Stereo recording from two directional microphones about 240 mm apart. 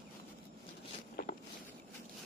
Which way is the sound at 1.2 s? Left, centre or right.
Left.